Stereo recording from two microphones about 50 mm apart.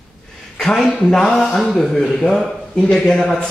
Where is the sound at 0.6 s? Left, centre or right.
Centre.